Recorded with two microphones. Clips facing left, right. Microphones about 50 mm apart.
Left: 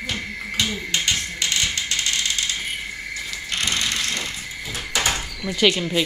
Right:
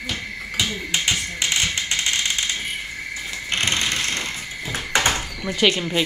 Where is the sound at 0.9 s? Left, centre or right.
Centre.